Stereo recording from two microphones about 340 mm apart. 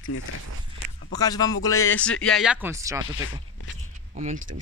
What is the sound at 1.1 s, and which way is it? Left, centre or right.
Speech, centre.